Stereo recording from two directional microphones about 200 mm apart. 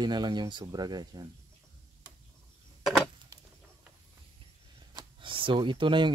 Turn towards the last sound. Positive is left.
turn(degrees=-25)  # may be behind; listen again after turning